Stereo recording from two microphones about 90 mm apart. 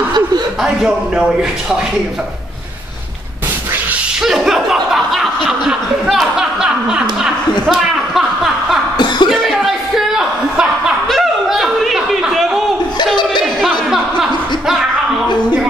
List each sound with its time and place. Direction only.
0.6 s a man's voice: 5° right (ahead or behind)
4.2 s chuckle: 5° right (ahead or behind)
7.6 s a sound: 5° right (ahead or behind)
8.9 s cough: 55° left (ahead or behind)
9.3 s chuckle: centre (ahead or behind)
13.6 s music: 5° right (ahead or behind)